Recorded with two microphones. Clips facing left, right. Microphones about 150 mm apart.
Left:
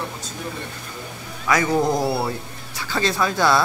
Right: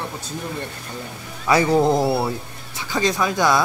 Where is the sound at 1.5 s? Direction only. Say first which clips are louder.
Right 3 dB; 30° right (ahead or behind).